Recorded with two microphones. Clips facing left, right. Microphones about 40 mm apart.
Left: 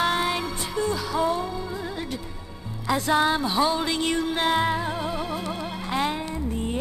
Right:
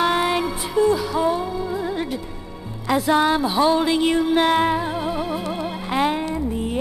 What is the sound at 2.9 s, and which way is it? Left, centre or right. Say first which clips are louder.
Music: right 4 dB; centre.